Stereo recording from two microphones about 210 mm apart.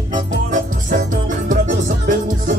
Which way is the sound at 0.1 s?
40° right (ahead or behind).